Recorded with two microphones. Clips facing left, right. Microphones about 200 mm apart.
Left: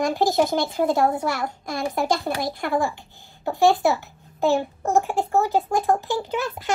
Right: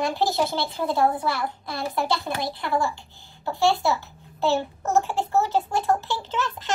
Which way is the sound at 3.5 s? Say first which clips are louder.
Left 4 dB; 15° left (ahead or behind).